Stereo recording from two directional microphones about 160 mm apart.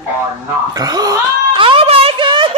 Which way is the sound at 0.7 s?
25° right (ahead or behind).